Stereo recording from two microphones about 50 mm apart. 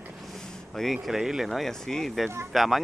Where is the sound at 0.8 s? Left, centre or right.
Centre.